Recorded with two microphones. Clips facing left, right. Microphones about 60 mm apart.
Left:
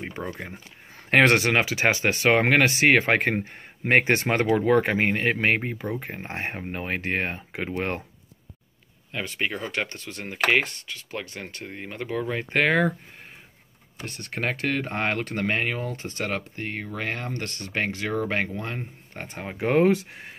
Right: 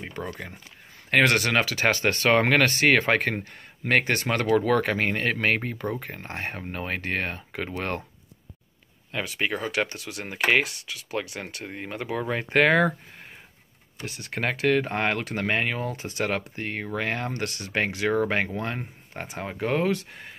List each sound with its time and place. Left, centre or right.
0.2 s speech: centre
3.2 s speech: left
9.1 s speech: centre
14.0 s speech: centre
16.3 s speech: centre
19.4 s speech: centre